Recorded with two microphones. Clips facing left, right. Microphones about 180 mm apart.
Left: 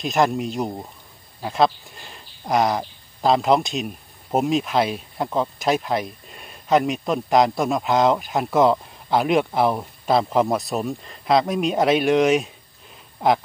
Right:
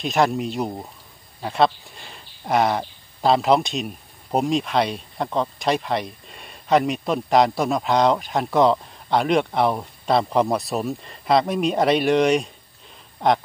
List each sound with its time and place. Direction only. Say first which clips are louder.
0.0 s speech: even; centre (ahead or behind)